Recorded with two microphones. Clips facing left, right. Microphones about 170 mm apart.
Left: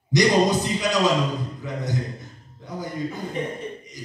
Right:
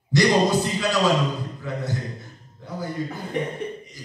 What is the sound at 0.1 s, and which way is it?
A man's voice, 20° left (ahead or behind).